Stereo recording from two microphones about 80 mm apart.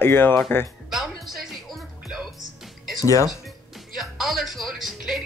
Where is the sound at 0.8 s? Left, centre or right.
Centre.